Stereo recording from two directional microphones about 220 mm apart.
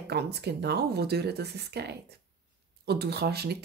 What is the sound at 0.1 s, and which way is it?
Speech, 50° right (ahead or behind).